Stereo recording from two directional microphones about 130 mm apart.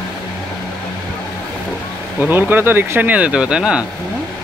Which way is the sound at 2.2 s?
15° right (ahead or behind).